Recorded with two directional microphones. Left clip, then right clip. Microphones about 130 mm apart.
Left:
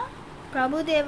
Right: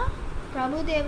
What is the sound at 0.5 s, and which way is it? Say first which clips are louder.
Speech: left 3 dB; 60° left (ahead or behind).